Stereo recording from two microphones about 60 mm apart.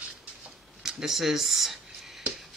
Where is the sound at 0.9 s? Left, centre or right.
Centre.